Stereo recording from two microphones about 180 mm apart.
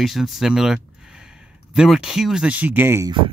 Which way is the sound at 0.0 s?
Centre (ahead or behind).